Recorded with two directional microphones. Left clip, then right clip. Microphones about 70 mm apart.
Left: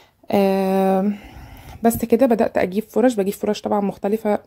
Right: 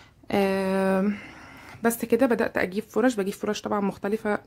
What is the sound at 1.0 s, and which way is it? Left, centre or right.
Speech, centre.